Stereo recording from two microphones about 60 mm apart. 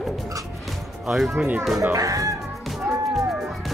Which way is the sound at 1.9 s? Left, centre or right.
Right.